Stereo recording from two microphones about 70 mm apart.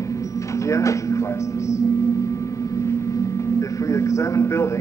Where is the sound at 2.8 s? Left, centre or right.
Left.